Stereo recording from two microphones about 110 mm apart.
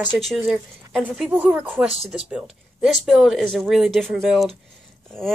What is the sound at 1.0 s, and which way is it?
A woman's voice, 10° right (ahead or behind).